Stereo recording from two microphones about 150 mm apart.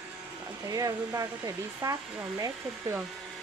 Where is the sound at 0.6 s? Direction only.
25° right (ahead or behind).